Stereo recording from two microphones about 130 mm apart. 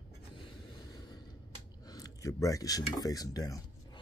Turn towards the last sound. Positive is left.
turn(degrees=30)  # may be behind; listen again after turning